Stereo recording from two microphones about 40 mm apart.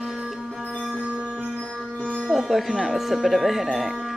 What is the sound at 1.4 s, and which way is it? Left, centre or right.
Music, left.